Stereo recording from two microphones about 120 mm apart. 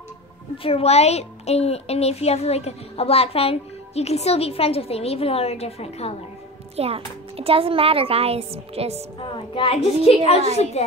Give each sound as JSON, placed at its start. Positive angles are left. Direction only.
{"t": 0.6, "sound": "a woman's voice", "side_deg": 50}
{"t": 6.8, "sound": "a child's voice", "side_deg": -55}
{"t": 9.2, "sound": "a woman's voice", "side_deg": 45}